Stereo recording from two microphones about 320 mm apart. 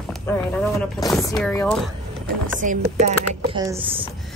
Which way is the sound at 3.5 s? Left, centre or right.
Centre.